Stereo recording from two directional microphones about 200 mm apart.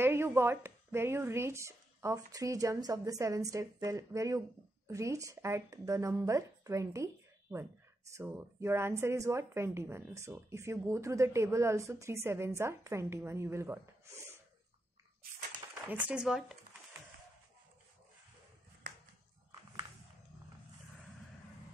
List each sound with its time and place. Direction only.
0.0 s speech: 10° right (ahead or behind)
8.1 s speech: 10° right (ahead or behind)
15.9 s speech: 5° right (ahead or behind)